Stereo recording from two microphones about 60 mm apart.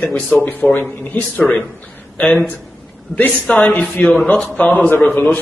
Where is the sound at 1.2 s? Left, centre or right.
Centre.